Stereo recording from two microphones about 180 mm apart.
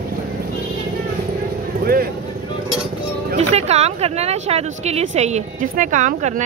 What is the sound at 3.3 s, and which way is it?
A woman's voice, 35° right (ahead or behind).